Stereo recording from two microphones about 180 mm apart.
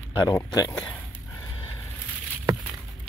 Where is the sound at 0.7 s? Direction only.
10° left (ahead or behind).